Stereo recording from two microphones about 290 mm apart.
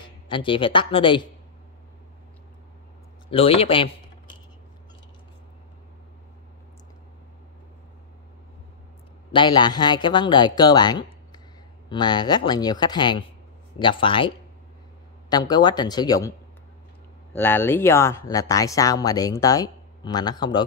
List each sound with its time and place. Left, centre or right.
0.0 s speech: centre
3.3 s typing: centre
9.3 s speech: centre
17.4 s speech: centre